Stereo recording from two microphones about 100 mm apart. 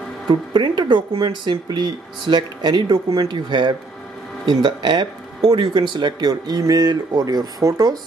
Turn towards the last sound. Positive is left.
turn(degrees=-35)  # may be behind; listen again after turning